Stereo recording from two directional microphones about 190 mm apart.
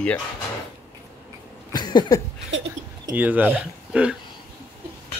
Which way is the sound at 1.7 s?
20° left (ahead or behind).